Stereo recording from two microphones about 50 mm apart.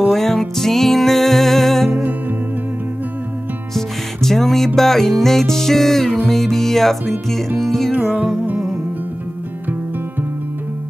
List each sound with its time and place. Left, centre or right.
0.1 s music: centre
1.9 s music: right
3.7 s music: centre